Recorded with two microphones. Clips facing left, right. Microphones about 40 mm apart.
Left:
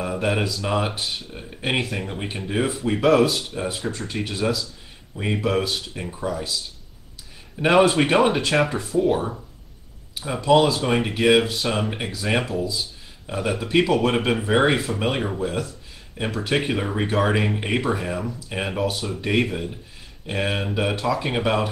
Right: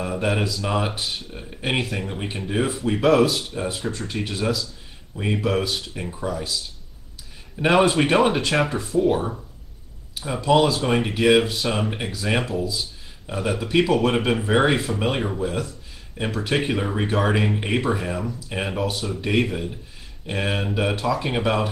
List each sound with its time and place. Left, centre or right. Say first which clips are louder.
0.0 s speech: even; centre
7.5 s speech: left 1 dB; centre